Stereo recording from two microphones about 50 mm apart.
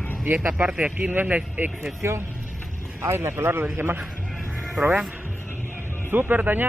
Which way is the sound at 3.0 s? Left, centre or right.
Right.